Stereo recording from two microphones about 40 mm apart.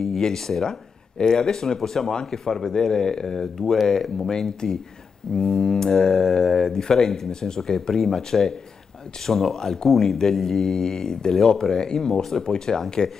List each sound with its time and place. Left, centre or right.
0.0 s speech: centre